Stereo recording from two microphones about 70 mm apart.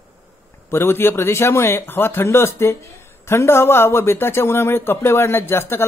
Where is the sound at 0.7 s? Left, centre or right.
Left.